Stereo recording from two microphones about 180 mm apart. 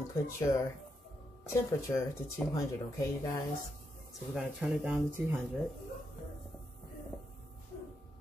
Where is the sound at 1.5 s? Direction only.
15° left (ahead or behind).